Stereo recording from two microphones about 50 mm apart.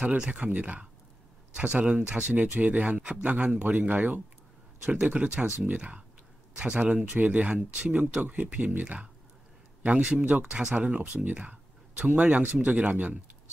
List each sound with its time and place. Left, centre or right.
0.0 s speech: right
4.8 s speech: right